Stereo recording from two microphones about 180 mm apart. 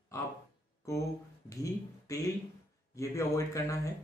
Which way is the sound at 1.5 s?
20° left (ahead or behind).